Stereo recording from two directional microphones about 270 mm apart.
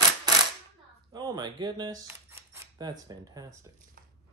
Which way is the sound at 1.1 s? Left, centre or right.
Centre.